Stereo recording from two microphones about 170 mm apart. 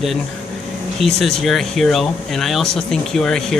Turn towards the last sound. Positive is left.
turn(degrees=5)  # may be behind; listen again after turning